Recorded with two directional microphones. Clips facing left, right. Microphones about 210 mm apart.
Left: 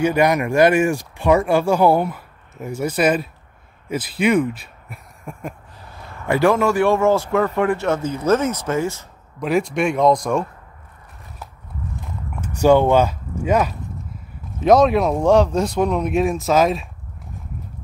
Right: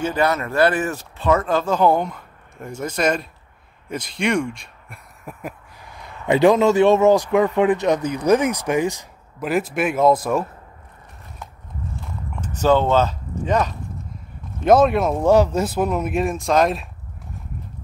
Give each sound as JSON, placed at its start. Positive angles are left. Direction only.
{"t": 0.0, "sound": "speech", "side_deg": 15}
{"t": 9.4, "sound": "speech", "side_deg": -5}
{"t": 12.4, "sound": "speech", "side_deg": 10}